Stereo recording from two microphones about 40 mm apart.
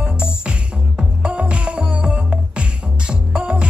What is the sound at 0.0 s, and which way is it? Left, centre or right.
Music, right.